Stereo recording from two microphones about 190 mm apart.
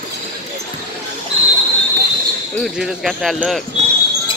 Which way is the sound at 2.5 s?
Centre (ahead or behind).